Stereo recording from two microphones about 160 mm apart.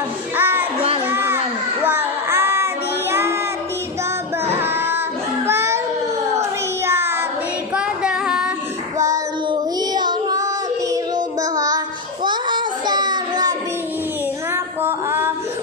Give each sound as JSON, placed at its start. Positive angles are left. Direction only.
{"t": 0.4, "sound": "music", "side_deg": -10}
{"t": 1.0, "sound": "a sound", "side_deg": -15}
{"t": 4.5, "sound": "child singing", "side_deg": -15}
{"t": 5.5, "sound": "baby cry", "side_deg": -15}
{"t": 6.9, "sound": "child singing", "side_deg": -15}
{"t": 7.7, "sound": "female singing", "side_deg": -5}
{"t": 8.9, "sound": "child singing", "side_deg": -20}
{"t": 12.3, "sound": "a sound", "side_deg": -30}
{"t": 14.5, "sound": "a sound", "side_deg": -15}